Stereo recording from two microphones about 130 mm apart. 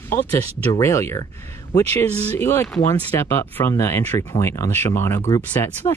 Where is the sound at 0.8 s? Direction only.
20° left (ahead or behind).